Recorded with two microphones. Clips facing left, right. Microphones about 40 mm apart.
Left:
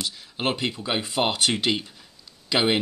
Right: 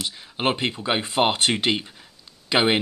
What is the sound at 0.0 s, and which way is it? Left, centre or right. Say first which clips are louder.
Speech: right 3 dB; right.